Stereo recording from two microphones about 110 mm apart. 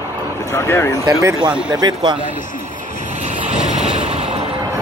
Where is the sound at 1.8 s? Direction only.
40° right (ahead or behind).